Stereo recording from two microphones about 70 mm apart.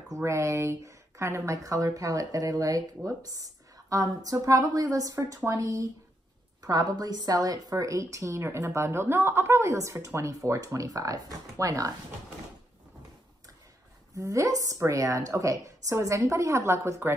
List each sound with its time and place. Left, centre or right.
0.1 s a woman's voice: right
6.6 s a woman's voice: right
14.1 s a woman's voice: right